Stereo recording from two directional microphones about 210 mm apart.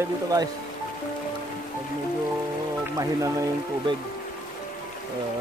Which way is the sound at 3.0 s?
15° right (ahead or behind).